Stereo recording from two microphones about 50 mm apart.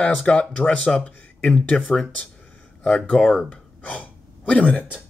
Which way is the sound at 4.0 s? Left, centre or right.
Left.